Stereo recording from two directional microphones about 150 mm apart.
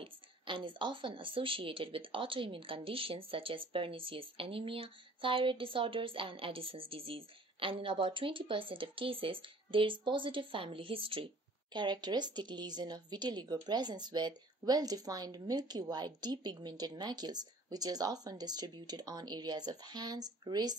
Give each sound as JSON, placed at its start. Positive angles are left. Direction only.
{"t": 0.0, "sound": "a woman's voice", "side_deg": -35}